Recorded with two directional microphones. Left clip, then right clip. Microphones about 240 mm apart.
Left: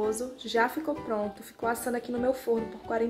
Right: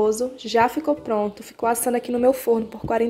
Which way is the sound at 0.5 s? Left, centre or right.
Right.